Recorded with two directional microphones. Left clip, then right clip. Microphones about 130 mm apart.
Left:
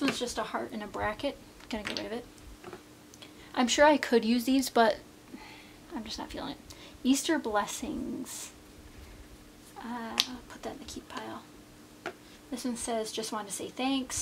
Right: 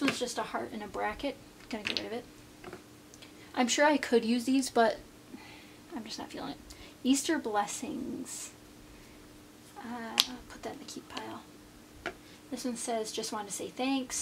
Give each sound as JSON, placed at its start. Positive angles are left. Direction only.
{"t": 0.0, "sound": "speech", "side_deg": 5}
{"t": 3.5, "sound": "speech", "side_deg": 10}
{"t": 9.8, "sound": "speech", "side_deg": 15}
{"t": 12.1, "sound": "a sound", "side_deg": 0}
{"t": 12.5, "sound": "speech", "side_deg": 15}